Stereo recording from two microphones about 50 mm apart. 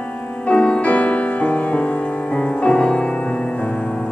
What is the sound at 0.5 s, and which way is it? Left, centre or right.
Music, left.